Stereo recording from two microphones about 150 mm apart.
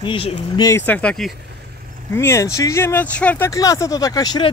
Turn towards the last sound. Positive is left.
turn(degrees=25)  # may be behind; listen again after turning